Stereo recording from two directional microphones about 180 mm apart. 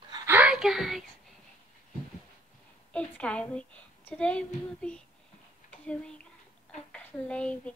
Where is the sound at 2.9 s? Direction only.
5° left (ahead or behind).